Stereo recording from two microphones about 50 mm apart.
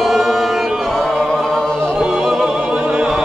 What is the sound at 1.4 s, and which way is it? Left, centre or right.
Choir, centre.